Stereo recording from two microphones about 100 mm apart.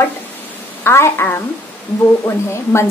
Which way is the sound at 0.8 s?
25° left (ahead or behind).